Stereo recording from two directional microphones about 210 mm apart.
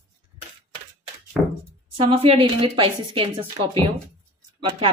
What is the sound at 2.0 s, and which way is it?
A woman's voice, 25° right (ahead or behind).